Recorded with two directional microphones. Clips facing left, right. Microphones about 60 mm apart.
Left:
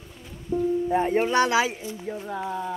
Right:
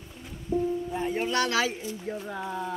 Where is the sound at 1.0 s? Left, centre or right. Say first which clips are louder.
Left 2 dB; left.